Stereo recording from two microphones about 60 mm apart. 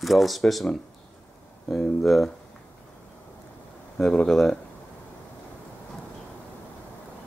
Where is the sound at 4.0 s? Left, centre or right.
Centre.